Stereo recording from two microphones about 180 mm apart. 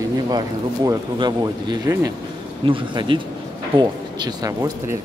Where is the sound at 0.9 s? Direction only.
25° right (ahead or behind).